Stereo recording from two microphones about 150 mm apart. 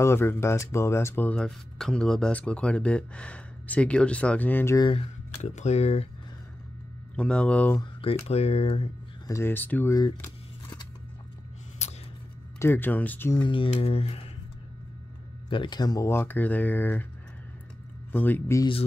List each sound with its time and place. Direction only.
0.0 s speech: 15° left (ahead or behind)
4.7 s a sound: 35° left (ahead or behind)
5.4 s speech: 50° left (ahead or behind)
7.2 s speech: 5° left (ahead or behind)
8.0 s speech: 40° left (ahead or behind)
9.3 s speech: 15° left (ahead or behind)
11.8 s a sound: 50° left (ahead or behind)
12.5 s speech: 15° left (ahead or behind)
13.4 s a sound: 35° left (ahead or behind)
15.5 s speech: 30° left (ahead or behind); by 17.0 s 10° left (ahead or behind)
18.1 s speech: 10° left (ahead or behind)